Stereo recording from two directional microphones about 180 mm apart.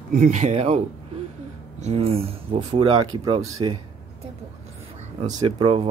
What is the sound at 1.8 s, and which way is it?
Speech, 35° right (ahead or behind).